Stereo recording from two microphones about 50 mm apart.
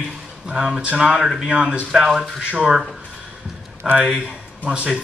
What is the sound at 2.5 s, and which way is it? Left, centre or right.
Speech, centre.